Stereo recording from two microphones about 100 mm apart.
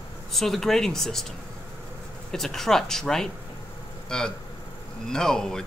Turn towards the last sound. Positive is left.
turn(degrees=5)  # may be behind; listen again after turning